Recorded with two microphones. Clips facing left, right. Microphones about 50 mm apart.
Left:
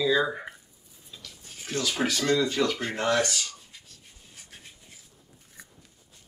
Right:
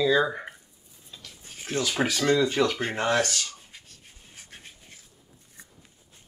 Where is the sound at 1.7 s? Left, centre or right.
Right.